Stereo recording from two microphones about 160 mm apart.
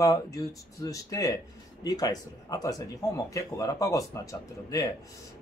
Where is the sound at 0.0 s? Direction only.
20° left (ahead or behind).